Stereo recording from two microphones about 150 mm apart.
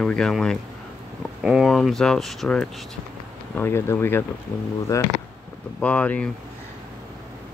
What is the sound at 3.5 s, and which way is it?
Speech, 15° left (ahead or behind).